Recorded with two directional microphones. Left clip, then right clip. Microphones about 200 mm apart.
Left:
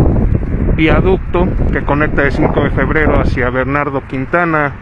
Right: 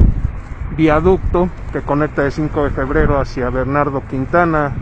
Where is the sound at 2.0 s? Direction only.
20° left (ahead or behind).